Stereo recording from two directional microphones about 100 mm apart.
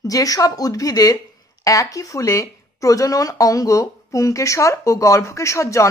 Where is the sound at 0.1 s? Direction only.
35° left (ahead or behind).